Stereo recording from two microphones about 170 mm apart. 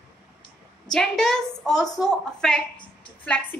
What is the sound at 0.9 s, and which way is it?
A woman's voice, 5° left (ahead or behind).